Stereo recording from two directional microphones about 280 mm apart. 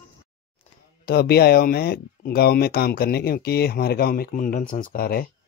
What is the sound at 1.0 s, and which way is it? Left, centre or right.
Speech, left.